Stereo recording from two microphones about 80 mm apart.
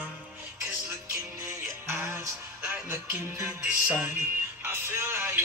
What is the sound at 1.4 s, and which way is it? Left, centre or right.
Music, right.